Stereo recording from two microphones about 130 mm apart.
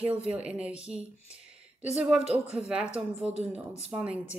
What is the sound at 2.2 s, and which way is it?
Speech, 50° right (ahead or behind).